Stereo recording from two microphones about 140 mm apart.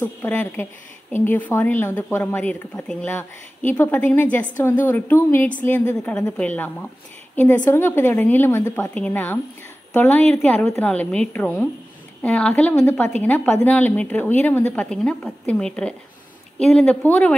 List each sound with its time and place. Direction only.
0.0 s speech: 15° left (ahead or behind)
8.9 s speech: 10° left (ahead or behind)